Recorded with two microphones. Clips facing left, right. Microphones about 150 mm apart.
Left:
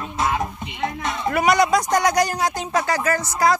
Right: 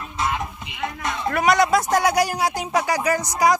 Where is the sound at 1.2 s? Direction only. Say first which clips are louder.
Left 1 dB; centre (ahead or behind).